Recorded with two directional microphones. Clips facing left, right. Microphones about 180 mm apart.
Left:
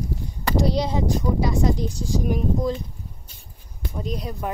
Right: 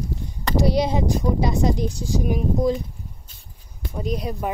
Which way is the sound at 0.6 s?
10° right (ahead or behind).